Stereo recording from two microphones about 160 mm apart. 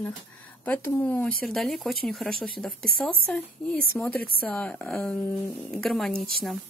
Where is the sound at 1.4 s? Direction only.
Centre (ahead or behind).